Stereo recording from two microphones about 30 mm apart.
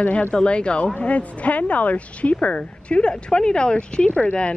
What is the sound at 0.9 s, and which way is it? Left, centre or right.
Speech, left.